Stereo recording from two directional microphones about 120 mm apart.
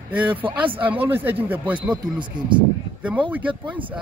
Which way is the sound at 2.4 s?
40° right (ahead or behind).